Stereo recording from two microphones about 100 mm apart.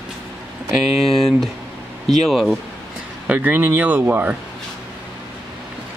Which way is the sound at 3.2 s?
15° right (ahead or behind).